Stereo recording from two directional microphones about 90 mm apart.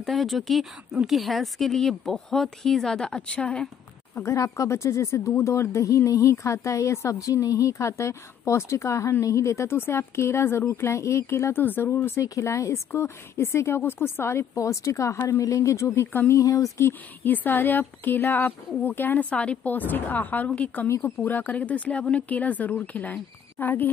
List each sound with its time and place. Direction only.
0.0 s a woman's voice: centre (ahead or behind)
4.1 s speech: 30° left (ahead or behind)
16.3 s speech: 40° left (ahead or behind); by 23.9 s 20° left (ahead or behind)